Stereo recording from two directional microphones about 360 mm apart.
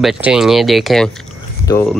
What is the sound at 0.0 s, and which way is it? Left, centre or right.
Speech, centre.